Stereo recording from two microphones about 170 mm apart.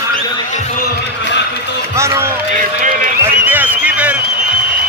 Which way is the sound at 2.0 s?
15° right (ahead or behind).